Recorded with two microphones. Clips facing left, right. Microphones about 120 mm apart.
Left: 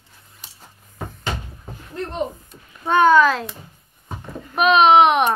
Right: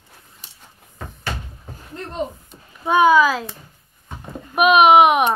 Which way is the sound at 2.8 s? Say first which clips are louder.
Even; 10° right (ahead or behind).